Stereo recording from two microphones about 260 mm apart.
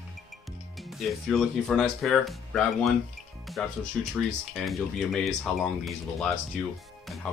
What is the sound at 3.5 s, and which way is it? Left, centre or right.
Music, centre.